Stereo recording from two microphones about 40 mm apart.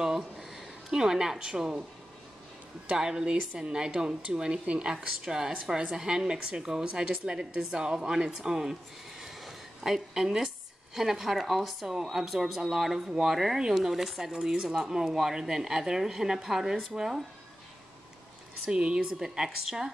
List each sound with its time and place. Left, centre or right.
0.4 s speech: centre
2.9 s speech: centre
4.9 s a woman's voice: centre
9.2 s a sound: centre
11.0 s a woman's voice: centre
18.7 s speech: right
18.9 s a woman's voice: centre